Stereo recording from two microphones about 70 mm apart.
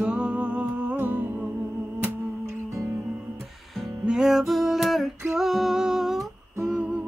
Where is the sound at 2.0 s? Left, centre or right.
Right.